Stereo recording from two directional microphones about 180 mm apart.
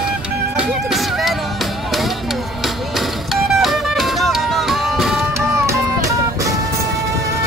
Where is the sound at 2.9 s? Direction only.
Centre (ahead or behind).